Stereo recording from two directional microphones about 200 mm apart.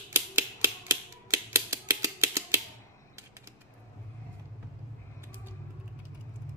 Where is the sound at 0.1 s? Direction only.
10° right (ahead or behind).